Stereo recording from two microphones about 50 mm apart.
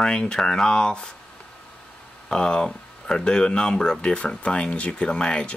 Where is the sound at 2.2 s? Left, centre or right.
Centre.